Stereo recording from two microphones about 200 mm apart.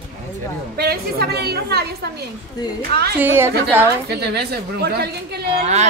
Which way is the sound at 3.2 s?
10° right (ahead or behind).